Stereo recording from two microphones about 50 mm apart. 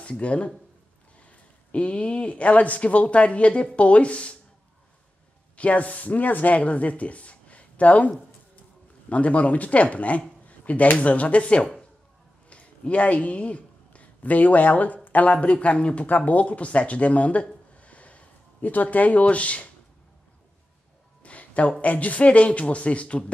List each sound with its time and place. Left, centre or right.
0.0 s speech: left
5.6 s speech: left
9.1 s speech: left
21.2 s music: left
21.8 s speech: left